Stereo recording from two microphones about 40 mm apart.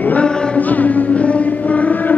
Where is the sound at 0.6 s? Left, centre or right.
Left.